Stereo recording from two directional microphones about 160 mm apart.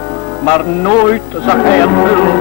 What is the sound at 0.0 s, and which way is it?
Music, 20° left (ahead or behind).